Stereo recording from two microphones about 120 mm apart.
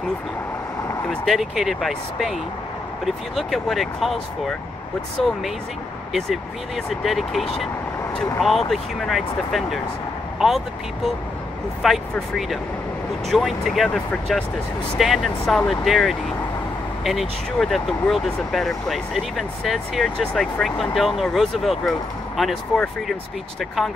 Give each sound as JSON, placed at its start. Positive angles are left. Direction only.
{"t": 1.0, "sound": "speech", "side_deg": 5}
{"t": 6.9, "sound": "speech", "side_deg": 0}
{"t": 11.8, "sound": "speech", "side_deg": 0}